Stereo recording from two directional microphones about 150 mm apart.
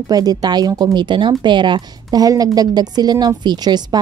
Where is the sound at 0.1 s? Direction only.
25° right (ahead or behind).